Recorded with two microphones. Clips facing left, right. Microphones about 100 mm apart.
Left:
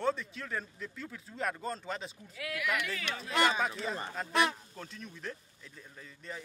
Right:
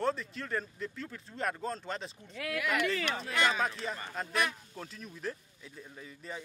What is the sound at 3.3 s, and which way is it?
Speech, 25° left (ahead or behind).